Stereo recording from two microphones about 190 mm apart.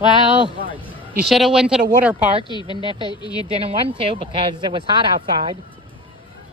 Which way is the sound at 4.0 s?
30° right (ahead or behind).